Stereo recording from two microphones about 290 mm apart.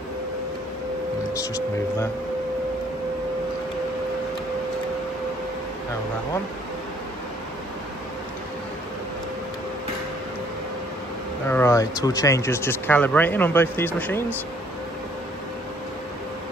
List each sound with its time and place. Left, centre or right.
1.3 s speech: centre
11.4 s speech: centre